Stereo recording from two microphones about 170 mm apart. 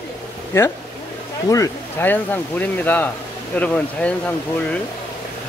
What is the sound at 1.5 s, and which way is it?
Speech, 15° left (ahead or behind).